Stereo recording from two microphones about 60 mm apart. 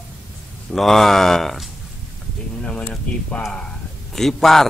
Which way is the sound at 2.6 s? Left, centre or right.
Centre.